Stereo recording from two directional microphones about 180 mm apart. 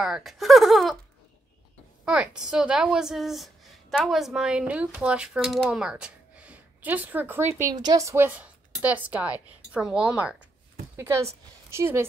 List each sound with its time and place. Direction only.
0.0 s speech: centre (ahead or behind)
2.0 s a woman's voice: 5° right (ahead or behind)